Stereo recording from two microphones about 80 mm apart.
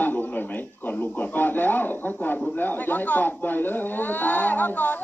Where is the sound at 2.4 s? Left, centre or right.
Left.